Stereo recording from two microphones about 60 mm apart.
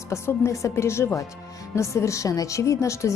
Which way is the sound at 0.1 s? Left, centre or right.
Left.